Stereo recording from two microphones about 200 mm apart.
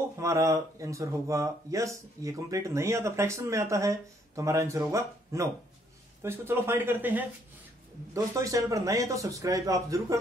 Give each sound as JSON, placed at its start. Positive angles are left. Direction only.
{"t": 0.2, "sound": "speech", "side_deg": -15}